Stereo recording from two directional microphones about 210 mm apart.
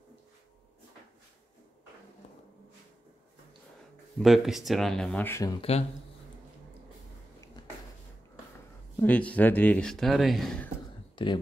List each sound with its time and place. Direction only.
4.2 s speech: centre (ahead or behind)
5.6 s speech: 30° left (ahead or behind)
9.0 s speech: 5° left (ahead or behind)